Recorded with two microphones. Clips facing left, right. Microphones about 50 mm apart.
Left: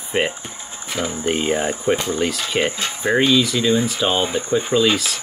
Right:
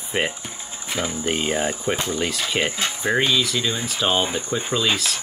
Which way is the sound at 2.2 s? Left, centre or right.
Centre.